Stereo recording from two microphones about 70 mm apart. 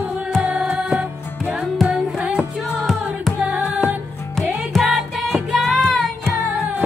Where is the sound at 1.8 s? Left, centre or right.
Centre.